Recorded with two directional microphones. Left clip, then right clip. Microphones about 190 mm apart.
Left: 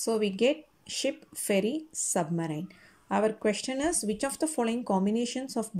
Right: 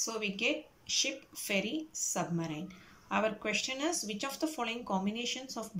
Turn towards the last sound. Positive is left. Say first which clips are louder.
# left 5 dB
turn(degrees=35)  # may be behind; listen again after turning